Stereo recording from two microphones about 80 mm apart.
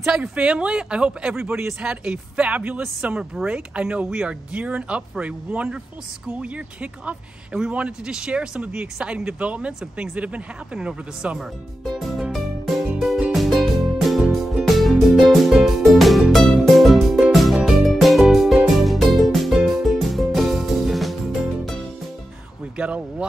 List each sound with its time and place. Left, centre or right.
0.2 s speech: centre
1.3 s speech: right
1.8 s speech: centre
11.8 s music: centre
22.8 s speech: centre